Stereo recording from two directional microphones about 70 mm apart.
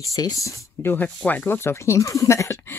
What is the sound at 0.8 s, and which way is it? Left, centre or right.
Speech, left.